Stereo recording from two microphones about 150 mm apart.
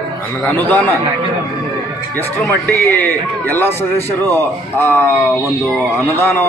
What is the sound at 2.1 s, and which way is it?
A man's voice, 15° left (ahead or behind).